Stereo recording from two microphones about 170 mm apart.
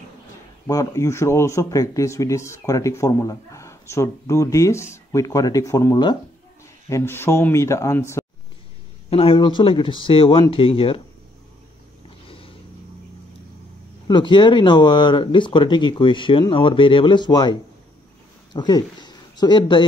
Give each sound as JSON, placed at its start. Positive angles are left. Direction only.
{"t": 0.7, "sound": "speech", "side_deg": 20}
{"t": 9.1, "sound": "speech", "side_deg": 35}
{"t": 12.3, "sound": "a sound", "side_deg": 30}
{"t": 14.0, "sound": "speech", "side_deg": 25}